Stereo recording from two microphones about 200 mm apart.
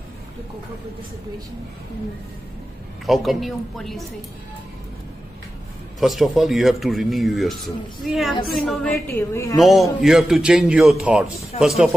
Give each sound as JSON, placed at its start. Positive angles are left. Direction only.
{"t": 3.1, "sound": "a man's voice", "side_deg": 0}
{"t": 5.9, "sound": "a man's voice", "side_deg": 0}
{"t": 9.6, "sound": "a man's voice", "side_deg": 0}